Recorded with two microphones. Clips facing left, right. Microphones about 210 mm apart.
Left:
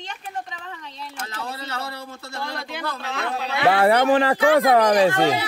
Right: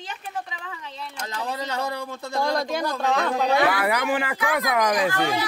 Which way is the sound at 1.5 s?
15° right (ahead or behind).